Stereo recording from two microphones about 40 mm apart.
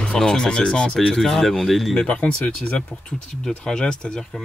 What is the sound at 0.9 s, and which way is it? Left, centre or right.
Speech, centre.